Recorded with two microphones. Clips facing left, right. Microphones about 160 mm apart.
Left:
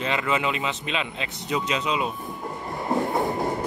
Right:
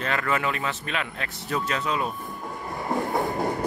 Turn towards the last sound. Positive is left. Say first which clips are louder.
# left 1 dB
turn(degrees=0)  # may be behind; listen again after turning